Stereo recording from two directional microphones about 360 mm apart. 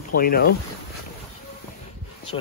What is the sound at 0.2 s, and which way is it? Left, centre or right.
Speech, left.